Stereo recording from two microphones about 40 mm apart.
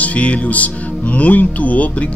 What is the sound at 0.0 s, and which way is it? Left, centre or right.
Speech, left.